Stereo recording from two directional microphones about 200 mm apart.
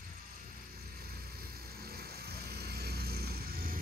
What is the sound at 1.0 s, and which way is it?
Vehicle, 50° right (ahead or behind).